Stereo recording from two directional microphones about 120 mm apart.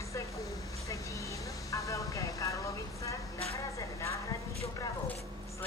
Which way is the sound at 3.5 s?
25° left (ahead or behind).